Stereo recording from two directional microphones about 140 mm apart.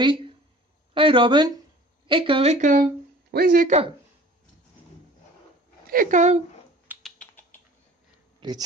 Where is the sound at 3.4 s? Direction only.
90° right.